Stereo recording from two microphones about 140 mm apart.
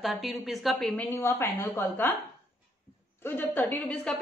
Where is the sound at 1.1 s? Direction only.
15° left (ahead or behind).